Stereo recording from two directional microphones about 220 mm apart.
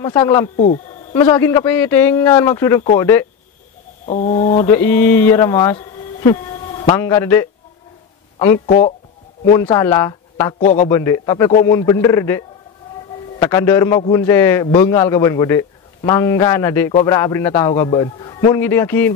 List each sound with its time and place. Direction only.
0.1 s a man's voice: 15° left (ahead or behind)
4.0 s bird: 30° left (ahead or behind)
4.6 s a man's voice: 10° left (ahead or behind)
8.6 s bird: 25° left (ahead or behind)
9.5 s a man's voice: 15° left (ahead or behind)
10.3 s speech: 30° left (ahead or behind)
10.9 s a man's voice: 15° left (ahead or behind)